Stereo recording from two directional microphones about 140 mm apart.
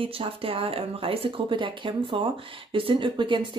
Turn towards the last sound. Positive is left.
turn(degrees=-35)  # may be behind; listen again after turning